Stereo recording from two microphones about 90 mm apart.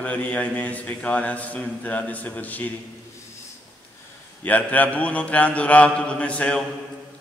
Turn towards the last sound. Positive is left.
turn(degrees=10)  # may be behind; listen again after turning